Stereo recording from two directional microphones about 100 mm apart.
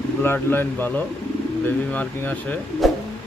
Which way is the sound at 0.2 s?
20° left (ahead or behind).